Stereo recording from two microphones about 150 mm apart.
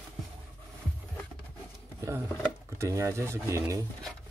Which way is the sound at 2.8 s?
20° right (ahead or behind).